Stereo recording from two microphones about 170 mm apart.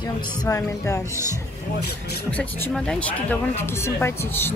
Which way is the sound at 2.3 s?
10° left (ahead or behind).